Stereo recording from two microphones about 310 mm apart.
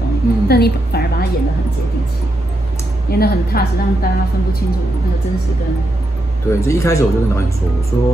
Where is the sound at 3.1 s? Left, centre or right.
Left.